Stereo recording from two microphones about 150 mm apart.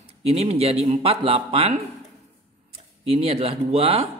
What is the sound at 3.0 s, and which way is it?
Speech, 40° right (ahead or behind).